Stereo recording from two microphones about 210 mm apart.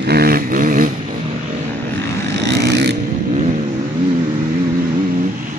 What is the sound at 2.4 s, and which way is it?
Vehicle, 55° right (ahead or behind).